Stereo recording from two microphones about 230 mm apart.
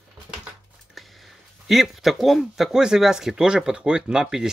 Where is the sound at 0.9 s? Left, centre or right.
Centre.